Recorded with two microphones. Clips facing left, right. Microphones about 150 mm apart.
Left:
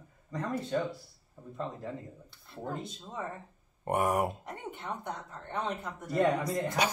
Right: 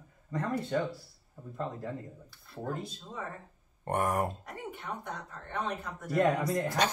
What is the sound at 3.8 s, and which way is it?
Speech, 10° left (ahead or behind).